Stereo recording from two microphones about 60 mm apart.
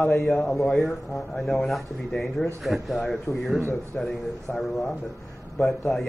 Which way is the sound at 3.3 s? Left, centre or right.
Left.